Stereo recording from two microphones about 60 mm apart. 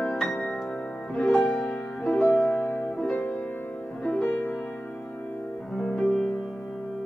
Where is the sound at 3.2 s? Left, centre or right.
Left.